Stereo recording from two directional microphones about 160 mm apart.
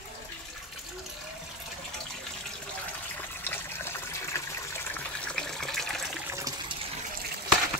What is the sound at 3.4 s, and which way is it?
Water, 15° left (ahead or behind).